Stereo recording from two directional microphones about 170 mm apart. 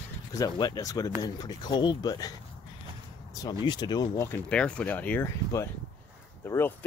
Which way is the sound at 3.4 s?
25° left (ahead or behind).